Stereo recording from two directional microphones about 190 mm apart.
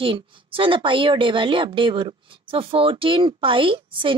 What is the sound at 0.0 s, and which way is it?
A woman's voice, 30° right (ahead or behind).